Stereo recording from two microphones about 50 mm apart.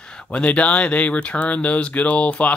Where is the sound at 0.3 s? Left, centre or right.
Left.